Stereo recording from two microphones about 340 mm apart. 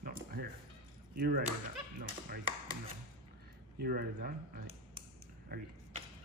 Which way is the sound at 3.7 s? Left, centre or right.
Right.